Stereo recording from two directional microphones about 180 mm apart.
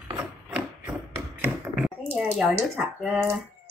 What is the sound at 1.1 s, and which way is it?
Tap, 10° right (ahead or behind).